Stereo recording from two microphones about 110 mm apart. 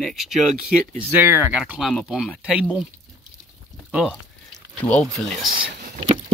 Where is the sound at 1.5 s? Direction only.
5° right (ahead or behind).